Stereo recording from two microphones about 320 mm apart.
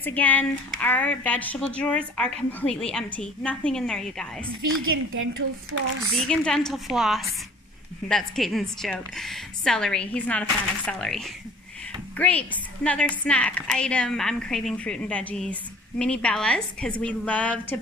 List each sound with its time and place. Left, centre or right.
0.0 s speech: centre
4.6 s a woman's voice: right
5.1 s speech: right
6.0 s speech: centre